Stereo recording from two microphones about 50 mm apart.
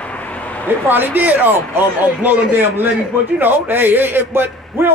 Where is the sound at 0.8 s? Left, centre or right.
Right.